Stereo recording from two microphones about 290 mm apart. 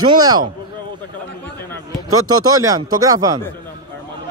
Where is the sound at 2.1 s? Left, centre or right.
Right.